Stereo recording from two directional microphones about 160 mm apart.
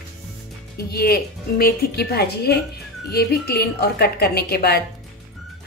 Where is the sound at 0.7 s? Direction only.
75° left (ahead or behind).